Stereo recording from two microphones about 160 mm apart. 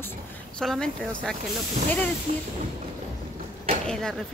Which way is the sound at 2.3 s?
45° right (ahead or behind).